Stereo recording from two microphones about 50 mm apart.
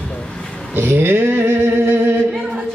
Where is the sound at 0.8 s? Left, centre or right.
Right.